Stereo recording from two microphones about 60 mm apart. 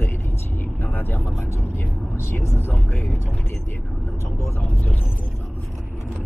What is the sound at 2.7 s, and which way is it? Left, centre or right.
Speech, left.